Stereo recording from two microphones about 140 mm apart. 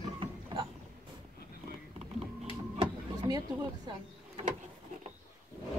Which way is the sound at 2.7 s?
45° right (ahead or behind).